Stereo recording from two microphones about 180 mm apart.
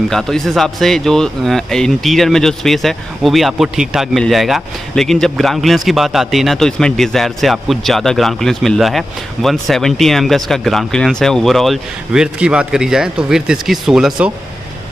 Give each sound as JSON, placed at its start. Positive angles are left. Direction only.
{"t": 0.1, "sound": "a man's voice", "side_deg": 0}